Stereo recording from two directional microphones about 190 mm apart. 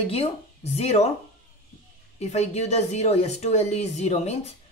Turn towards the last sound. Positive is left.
turn(degrees=35)  # may be behind; listen again after turning